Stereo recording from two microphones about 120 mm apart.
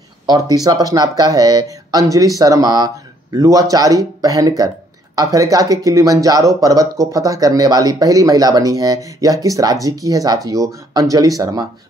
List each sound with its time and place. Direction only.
0.3 s speech: 35° right (ahead or behind)